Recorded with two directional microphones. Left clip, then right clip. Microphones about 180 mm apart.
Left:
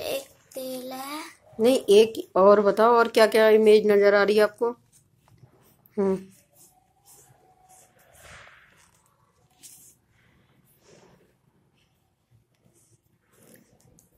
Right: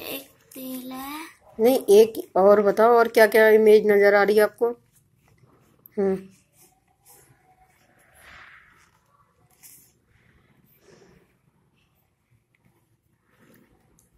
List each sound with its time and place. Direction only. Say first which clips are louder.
0.0 s child singing: left 5 dB; 35° left (ahead or behind)
0.8 s a sound: even; 40° left (ahead or behind)
1.6 s speech: right 2 dB; centre (ahead or behind)